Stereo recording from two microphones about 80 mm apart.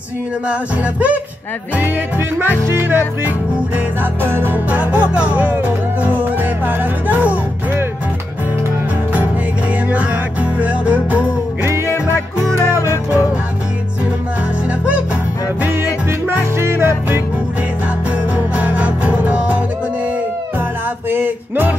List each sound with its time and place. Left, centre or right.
0.5 s music: centre
4.6 s music: centre
10.6 s music: centre
12.4 s music: right
15.8 s music: right
18.3 s music: centre
21.1 s music: right